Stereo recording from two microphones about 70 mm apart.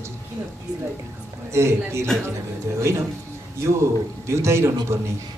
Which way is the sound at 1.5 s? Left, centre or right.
Right.